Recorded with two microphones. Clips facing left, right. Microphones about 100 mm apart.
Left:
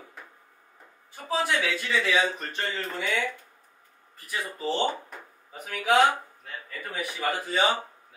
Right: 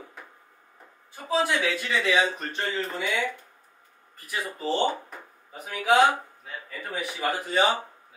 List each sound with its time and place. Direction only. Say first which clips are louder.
1.4 s speech: even; 20° right (ahead or behind)
2.3 s a man's voice: right 2 dB; centre (ahead or behind)
4.3 s speech: right 1 dB; 10° right (ahead or behind)
6.4 s a sound: right 1 dB; 5° right (ahead or behind)
7.0 s a man's voice: right 1 dB; centre (ahead or behind)